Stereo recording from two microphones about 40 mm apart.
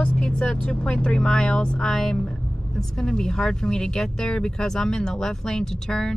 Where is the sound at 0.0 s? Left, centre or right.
Left.